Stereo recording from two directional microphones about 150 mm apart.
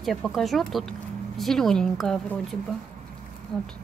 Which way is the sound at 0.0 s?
Centre (ahead or behind).